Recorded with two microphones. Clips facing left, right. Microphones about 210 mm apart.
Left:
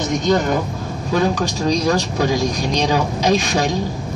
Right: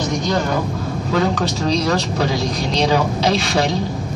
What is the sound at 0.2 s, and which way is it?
A man's voice, 20° left (ahead or behind).